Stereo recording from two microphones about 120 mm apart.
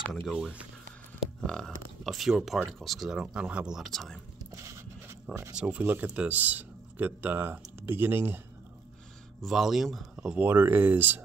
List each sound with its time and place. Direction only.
0.1 s speech: 5° left (ahead or behind)
4.5 s a sound: 25° right (ahead or behind)
5.3 s speech: centre (ahead or behind)
5.6 s speech: 10° right (ahead or behind)
9.4 s speech: 5° right (ahead or behind)
10.4 s speech: 15° right (ahead or behind)